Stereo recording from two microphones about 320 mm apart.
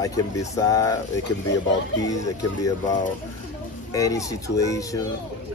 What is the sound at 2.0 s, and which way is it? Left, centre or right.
Speech, centre.